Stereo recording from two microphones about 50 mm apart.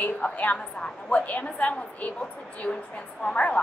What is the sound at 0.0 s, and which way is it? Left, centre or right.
Speech, left.